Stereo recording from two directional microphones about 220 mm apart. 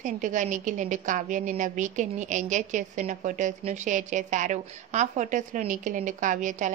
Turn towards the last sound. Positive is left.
turn(degrees=-35)  # may be behind; listen again after turning